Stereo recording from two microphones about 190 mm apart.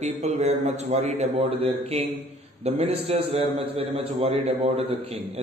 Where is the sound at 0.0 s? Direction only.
35° right (ahead or behind).